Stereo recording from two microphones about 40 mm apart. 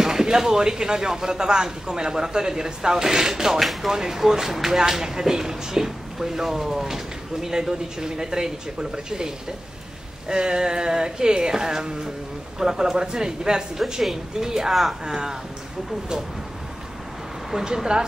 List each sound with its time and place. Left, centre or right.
0.0 s speech: centre
3.5 s speech: centre
3.9 s speech: centre
10.2 s a sound: centre
12.5 s speech: centre
17.5 s speech: centre